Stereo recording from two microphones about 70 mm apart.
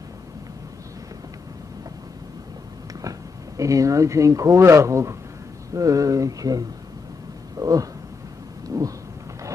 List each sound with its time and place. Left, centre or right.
3.0 s speech: right
7.5 s a sound: right
8.6 s thunder: right